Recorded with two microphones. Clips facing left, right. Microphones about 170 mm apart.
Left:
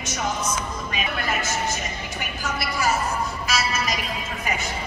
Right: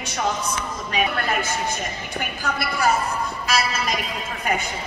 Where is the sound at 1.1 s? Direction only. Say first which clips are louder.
Right 2 dB; 55° right (ahead or behind).